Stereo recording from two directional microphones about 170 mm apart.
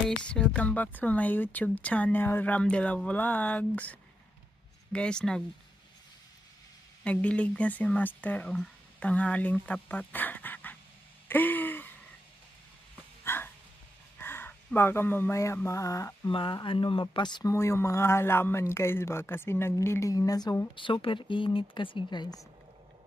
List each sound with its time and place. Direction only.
0.2 s a woman's voice: 5° left (ahead or behind)
7.1 s a woman's voice: 5° left (ahead or behind)
11.2 s a sound: 10° left (ahead or behind)
13.2 s a sound: 15° left (ahead or behind)
14.1 s mantra: 10° left (ahead or behind)
16.3 s a woman's voice: 30° left (ahead or behind)